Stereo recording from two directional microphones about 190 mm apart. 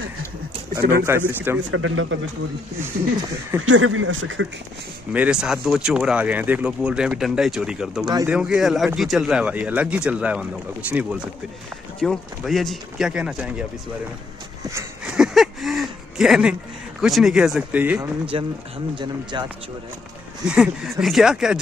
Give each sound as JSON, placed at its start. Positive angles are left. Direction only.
{"t": 1.0, "sound": "speech", "side_deg": -10}
{"t": 1.7, "sound": "speech", "side_deg": -90}
{"t": 3.6, "sound": "speech", "side_deg": -90}
{"t": 5.1, "sound": "speech", "side_deg": -5}
{"t": 8.0, "sound": "speech", "side_deg": -20}
{"t": 8.3, "sound": "speech", "side_deg": -5}
{"t": 14.6, "sound": "a sound", "side_deg": -15}
{"t": 15.0, "sound": "a sound", "side_deg": -5}
{"t": 17.0, "sound": "speech", "side_deg": -5}
{"t": 19.3, "sound": "speech", "side_deg": -25}
{"t": 20.4, "sound": "speech", "side_deg": -5}